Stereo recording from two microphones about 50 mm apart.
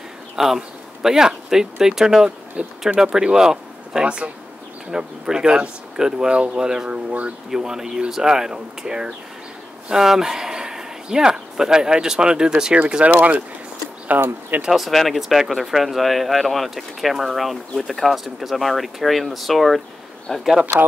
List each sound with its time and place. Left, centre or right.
0.4 s speech: centre
6.9 s speech: right
7.5 s speech: centre; by 14.6 s right
14.7 s speech: centre
20.3 s speech: centre